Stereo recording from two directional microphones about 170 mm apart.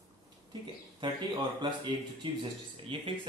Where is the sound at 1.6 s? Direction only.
25° right (ahead or behind).